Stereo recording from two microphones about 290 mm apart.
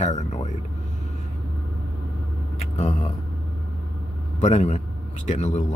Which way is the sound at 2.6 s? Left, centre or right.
Left.